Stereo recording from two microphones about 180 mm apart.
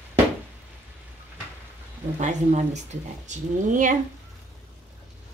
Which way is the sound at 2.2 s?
40° right (ahead or behind).